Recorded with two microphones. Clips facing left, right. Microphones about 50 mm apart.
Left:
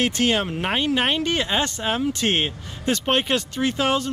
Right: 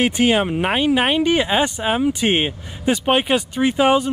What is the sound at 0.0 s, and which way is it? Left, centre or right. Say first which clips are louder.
Speech: right 4 dB; centre.